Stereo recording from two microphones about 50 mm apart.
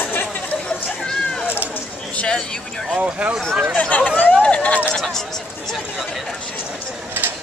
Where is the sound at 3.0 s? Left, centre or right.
Right.